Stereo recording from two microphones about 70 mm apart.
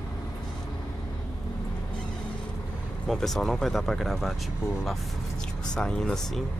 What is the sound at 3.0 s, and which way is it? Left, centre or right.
Speech, centre.